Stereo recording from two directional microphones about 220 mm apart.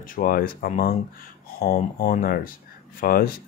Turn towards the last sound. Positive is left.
turn(degrees=40)  # may be behind; listen again after turning